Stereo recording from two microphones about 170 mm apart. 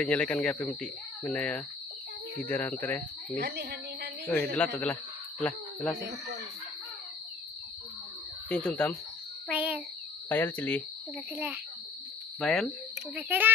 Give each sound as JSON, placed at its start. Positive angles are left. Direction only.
{"t": 0.0, "sound": "speech", "side_deg": 5}
{"t": 3.3, "sound": "speech", "side_deg": -75}
{"t": 4.6, "sound": "speech", "side_deg": 5}
{"t": 8.5, "sound": "speech", "side_deg": 5}
{"t": 9.5, "sound": "a sound", "side_deg": -10}
{"t": 10.3, "sound": "speech", "side_deg": 10}
{"t": 11.3, "sound": "a child's voice", "side_deg": -10}
{"t": 12.4, "sound": "speech", "side_deg": 0}
{"t": 13.1, "sound": "a child's voice", "side_deg": -10}